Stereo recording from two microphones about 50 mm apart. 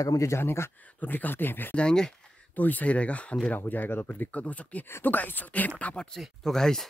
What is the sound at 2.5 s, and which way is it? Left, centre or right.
Speech, left.